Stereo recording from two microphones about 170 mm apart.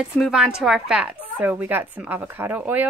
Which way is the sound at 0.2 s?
5° right (ahead or behind).